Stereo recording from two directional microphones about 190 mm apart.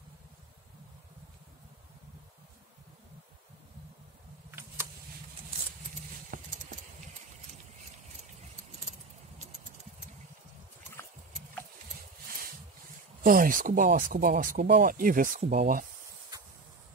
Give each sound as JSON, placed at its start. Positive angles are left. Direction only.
{"t": 4.5, "sound": "a sound", "side_deg": -10}
{"t": 6.3, "sound": "clip-clop", "side_deg": -50}
{"t": 13.2, "sound": "speech", "side_deg": -45}